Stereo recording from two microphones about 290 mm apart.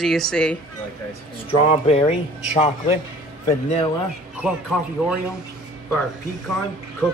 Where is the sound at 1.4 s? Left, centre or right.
Centre.